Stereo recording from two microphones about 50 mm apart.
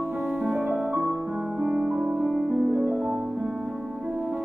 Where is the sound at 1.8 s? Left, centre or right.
Right.